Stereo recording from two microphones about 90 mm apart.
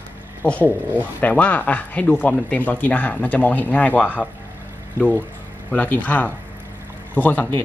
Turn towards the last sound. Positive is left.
turn(degrees=20)  # may be behind; listen again after turning